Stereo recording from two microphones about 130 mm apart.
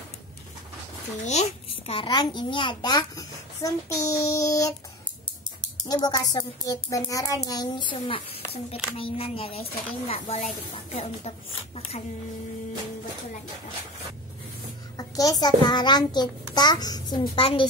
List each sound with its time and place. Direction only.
1.2 s a child's voice: 60° left (ahead or behind)
2.0 s a child's voice: 35° left (ahead or behind)
5.9 s a child's voice: 30° left (ahead or behind)
7.9 s a woman's voice: 45° left (ahead or behind)
15.0 s a child's voice: 30° left (ahead or behind)
17.4 s a woman's voice: 45° left (ahead or behind)